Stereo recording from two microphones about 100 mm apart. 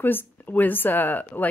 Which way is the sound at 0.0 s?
20° left (ahead or behind).